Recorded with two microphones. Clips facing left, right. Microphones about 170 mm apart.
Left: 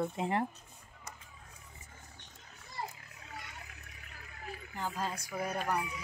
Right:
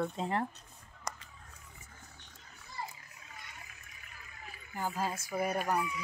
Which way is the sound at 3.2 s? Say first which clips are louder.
Left 5 dB; 70° left (ahead or behind).